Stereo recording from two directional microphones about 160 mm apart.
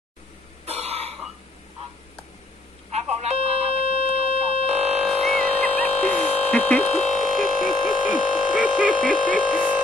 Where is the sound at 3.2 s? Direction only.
40° right (ahead or behind).